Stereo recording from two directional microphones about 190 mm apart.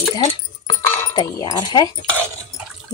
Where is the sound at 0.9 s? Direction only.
15° left (ahead or behind).